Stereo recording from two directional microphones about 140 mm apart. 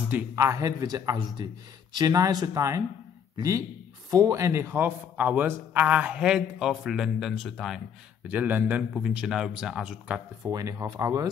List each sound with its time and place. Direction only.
0.1 s a man's voice: 20° right (ahead or behind); by 7.8 s centre (ahead or behind)
8.3 s a man's voice: 15° right (ahead or behind)
10.4 s speech: 25° right (ahead or behind)